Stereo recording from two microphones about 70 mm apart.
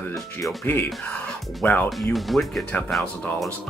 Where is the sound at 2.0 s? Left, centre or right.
Centre.